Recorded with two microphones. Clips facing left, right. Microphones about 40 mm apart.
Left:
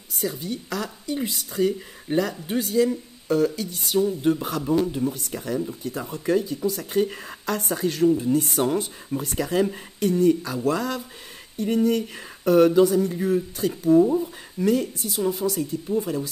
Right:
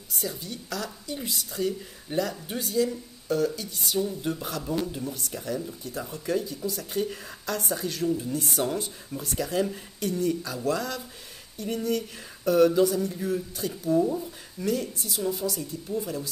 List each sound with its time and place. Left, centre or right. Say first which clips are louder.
0.2 s speech: left 7 dB; left
14.6 s speech: left 6 dB; left